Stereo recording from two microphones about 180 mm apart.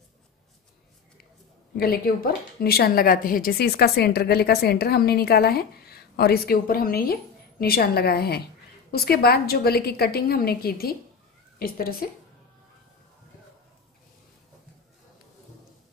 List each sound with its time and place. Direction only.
1.8 s a woman's voice: 55° left (ahead or behind)